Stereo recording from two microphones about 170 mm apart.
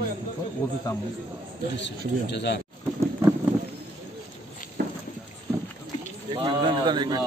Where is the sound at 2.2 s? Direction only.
90° left.